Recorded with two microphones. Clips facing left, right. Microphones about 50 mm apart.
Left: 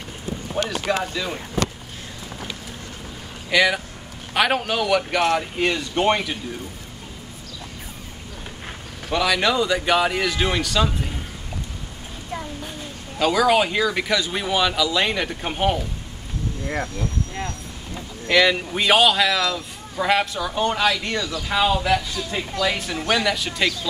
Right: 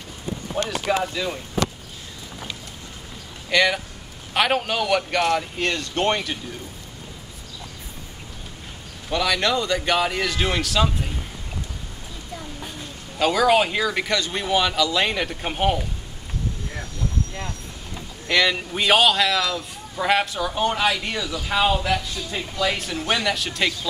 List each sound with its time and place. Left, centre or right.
0.5 s speech: centre
1.2 s speech: centre
3.4 s speech: centre
9.1 s speech: centre
13.2 s speech: centre
16.6 s speech: left
17.9 s speech: centre